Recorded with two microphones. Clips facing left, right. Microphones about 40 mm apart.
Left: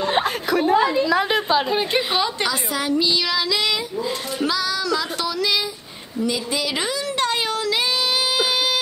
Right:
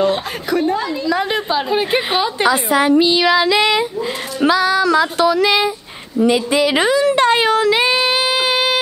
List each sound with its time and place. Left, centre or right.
0.5 s a woman's voice: centre
0.7 s a woman's voice: centre
1.0 s a woman's voice: centre
2.0 s a woman's voice: right
6.1 s a sound: right